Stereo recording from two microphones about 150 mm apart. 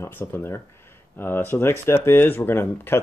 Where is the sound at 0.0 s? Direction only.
15° left (ahead or behind).